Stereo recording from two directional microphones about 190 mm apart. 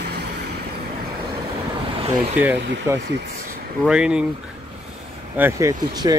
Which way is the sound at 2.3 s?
10° right (ahead or behind).